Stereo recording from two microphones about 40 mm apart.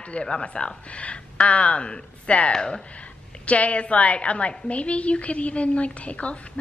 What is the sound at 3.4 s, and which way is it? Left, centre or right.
A woman's voice, left.